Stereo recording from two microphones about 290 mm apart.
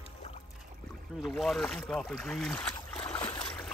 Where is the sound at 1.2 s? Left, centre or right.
Centre.